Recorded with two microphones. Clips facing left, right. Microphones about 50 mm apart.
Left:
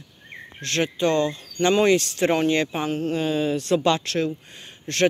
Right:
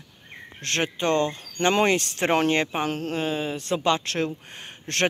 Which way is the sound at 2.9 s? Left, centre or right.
Right.